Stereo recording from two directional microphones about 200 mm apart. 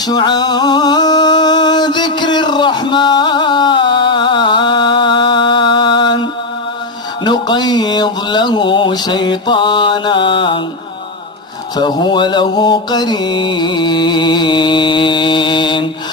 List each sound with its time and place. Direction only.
0.0 s music: 20° left (ahead or behind)
7.2 s mantra: 20° left (ahead or behind)
11.7 s mantra: 20° left (ahead or behind)